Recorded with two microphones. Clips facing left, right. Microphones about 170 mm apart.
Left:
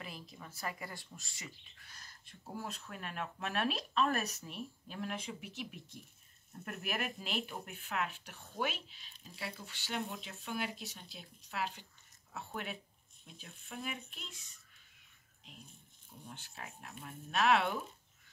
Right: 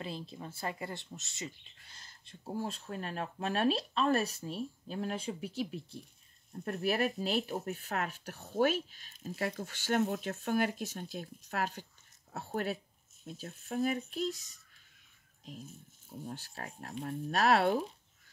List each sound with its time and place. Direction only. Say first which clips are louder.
0.0 s speech: right 7 dB; 30° right (ahead or behind)